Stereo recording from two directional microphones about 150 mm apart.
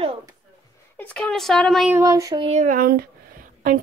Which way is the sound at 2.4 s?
55° right (ahead or behind).